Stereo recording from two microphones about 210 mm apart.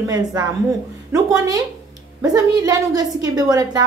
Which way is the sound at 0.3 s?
15° right (ahead or behind).